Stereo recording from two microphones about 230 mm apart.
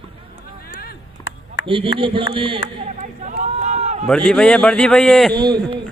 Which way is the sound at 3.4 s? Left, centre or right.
Right.